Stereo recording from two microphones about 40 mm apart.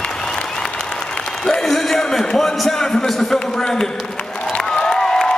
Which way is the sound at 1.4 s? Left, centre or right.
Centre.